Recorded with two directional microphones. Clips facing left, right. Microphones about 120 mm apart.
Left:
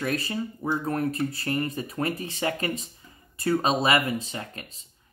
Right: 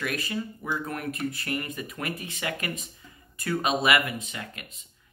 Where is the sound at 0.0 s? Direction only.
30° left (ahead or behind).